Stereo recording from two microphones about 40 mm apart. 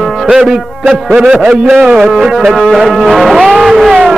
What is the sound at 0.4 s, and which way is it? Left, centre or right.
Speech, centre.